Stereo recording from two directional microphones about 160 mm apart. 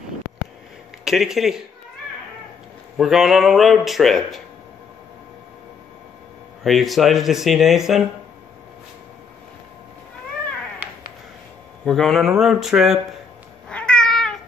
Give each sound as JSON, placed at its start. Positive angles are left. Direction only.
{"t": 1.0, "sound": "speech", "side_deg": 0}
{"t": 3.0, "sound": "speech", "side_deg": 0}
{"t": 6.6, "sound": "speech", "side_deg": 0}
{"t": 11.8, "sound": "speech", "side_deg": 0}
{"t": 13.7, "sound": "cat", "side_deg": 5}